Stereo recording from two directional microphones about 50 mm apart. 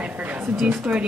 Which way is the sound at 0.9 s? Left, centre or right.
Right.